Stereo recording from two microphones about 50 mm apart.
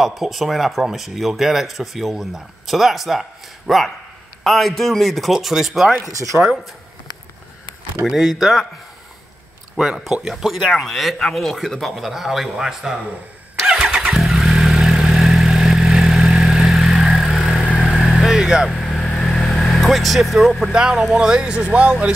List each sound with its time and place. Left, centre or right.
0.0 s speech: centre
6.1 s speech: right
8.0 s speech: centre
10.2 s speech: centre
13.7 s vehicle: centre
18.4 s speech: centre
18.8 s vehicle: centre
20.7 s speech: centre